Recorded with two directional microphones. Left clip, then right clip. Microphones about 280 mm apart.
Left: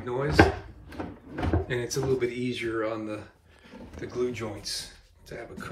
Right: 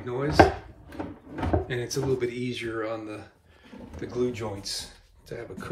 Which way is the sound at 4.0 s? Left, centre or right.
Centre.